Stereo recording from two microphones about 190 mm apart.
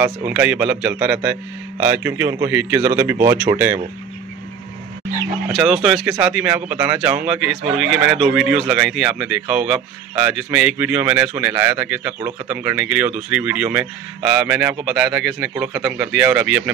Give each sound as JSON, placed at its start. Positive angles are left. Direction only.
{"t": 0.0, "sound": "a man's voice", "side_deg": -10}
{"t": 5.5, "sound": "a man's voice", "side_deg": 0}